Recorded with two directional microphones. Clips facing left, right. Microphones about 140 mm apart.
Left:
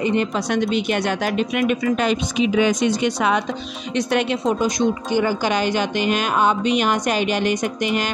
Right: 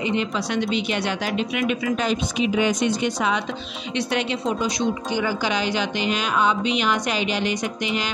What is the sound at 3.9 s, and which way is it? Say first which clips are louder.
Speech: left 4 dB; 50° left (ahead or behind).